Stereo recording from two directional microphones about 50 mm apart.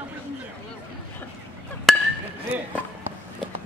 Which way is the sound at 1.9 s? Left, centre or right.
Centre.